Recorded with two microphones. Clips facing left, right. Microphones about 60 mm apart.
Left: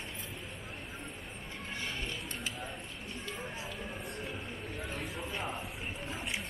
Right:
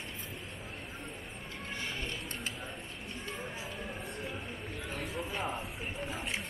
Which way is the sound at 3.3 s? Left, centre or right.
Centre.